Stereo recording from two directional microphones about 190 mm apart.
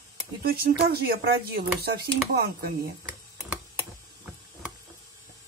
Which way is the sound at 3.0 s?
10° right (ahead or behind).